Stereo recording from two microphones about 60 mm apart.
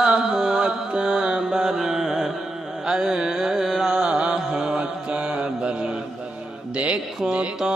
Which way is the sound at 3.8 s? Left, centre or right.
Centre.